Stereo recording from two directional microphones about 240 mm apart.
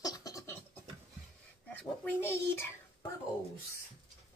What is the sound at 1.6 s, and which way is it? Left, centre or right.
A child's voice, centre.